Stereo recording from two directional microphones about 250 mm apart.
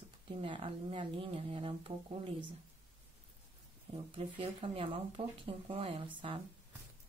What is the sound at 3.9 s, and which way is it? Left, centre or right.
Speech, right.